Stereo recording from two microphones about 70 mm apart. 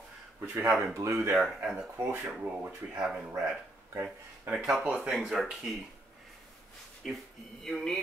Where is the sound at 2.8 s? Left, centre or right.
Right.